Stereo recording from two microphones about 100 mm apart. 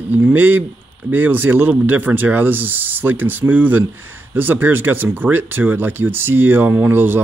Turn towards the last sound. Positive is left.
turn(degrees=-20)  # may be behind; listen again after turning